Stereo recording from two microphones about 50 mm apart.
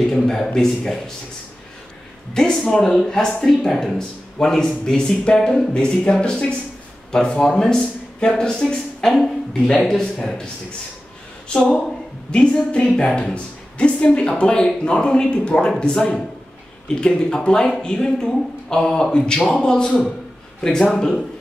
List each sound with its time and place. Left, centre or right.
0.0 s speech: centre
2.6 s speech: centre
7.4 s a woman's voice: centre